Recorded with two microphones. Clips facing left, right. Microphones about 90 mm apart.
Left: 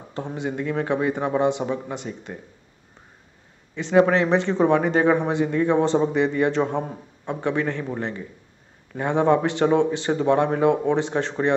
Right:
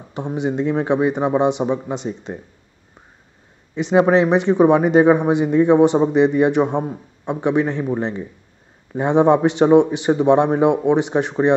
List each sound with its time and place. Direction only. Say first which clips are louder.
0.1 s a man's voice: right 6 dB; 15° right (ahead or behind)
3.7 s a man's voice: right 3 dB; 20° right (ahead or behind)